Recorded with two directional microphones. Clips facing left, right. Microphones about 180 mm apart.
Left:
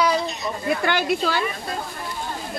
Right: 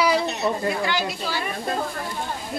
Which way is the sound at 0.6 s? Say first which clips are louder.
Left 3 dB; 55° left (ahead or behind).